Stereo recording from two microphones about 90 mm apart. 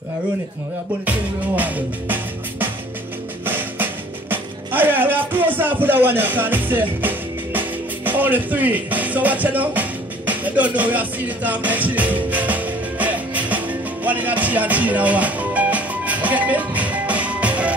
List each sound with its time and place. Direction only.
1.0 s music: 15° right (ahead or behind)
3.4 s music: 20° right (ahead or behind)